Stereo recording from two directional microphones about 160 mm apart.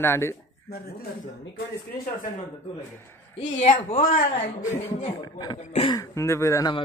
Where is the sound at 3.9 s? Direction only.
60° left (ahead or behind).